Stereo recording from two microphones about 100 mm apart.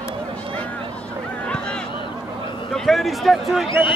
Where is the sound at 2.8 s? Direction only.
Centre (ahead or behind).